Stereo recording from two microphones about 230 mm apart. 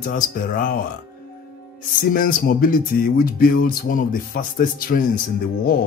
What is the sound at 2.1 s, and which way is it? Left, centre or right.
Speech, left.